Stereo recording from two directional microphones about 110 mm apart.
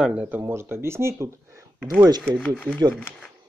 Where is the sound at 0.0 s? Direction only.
10° right (ahead or behind).